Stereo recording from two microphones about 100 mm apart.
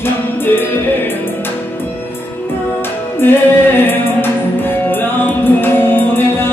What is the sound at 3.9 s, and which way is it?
Music, 20° left (ahead or behind).